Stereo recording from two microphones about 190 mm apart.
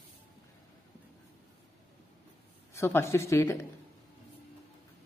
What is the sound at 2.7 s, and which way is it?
Speech, 15° left (ahead or behind).